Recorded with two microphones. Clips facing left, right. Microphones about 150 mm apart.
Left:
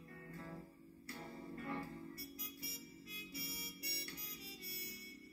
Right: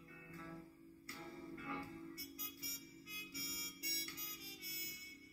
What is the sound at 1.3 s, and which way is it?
Music, 55° left (ahead or behind).